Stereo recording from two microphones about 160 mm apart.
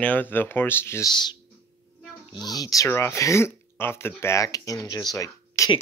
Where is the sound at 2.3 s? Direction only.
25° left (ahead or behind).